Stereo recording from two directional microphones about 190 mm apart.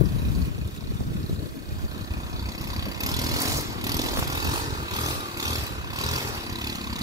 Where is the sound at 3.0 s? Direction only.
20° right (ahead or behind).